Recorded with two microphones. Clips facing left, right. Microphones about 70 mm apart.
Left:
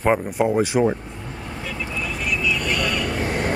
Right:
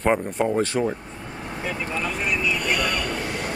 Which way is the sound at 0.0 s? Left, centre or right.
Centre.